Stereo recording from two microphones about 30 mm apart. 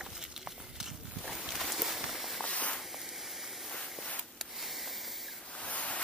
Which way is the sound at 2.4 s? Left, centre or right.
Left.